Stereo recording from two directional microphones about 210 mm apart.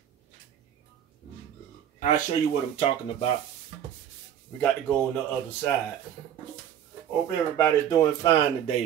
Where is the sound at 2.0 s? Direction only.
35° left (ahead or behind).